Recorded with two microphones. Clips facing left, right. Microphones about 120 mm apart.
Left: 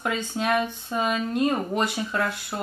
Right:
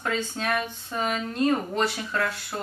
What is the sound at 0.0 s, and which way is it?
Speech, 15° left (ahead or behind).